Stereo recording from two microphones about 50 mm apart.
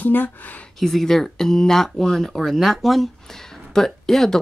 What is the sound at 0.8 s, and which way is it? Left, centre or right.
Speech, centre.